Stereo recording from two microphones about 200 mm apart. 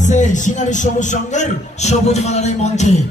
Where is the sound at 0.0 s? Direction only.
40° left (ahead or behind).